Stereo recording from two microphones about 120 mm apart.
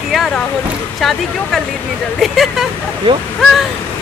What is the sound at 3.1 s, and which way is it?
Speech, 45° right (ahead or behind).